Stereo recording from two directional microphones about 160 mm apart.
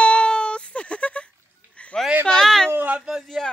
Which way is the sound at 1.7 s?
5° left (ahead or behind).